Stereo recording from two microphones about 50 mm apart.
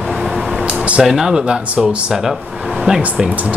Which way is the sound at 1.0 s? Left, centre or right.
Centre.